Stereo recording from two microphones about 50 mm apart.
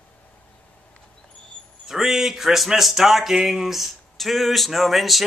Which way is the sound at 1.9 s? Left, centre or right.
Centre.